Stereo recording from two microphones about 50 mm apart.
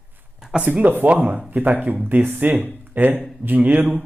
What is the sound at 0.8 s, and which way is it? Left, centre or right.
Speech, right.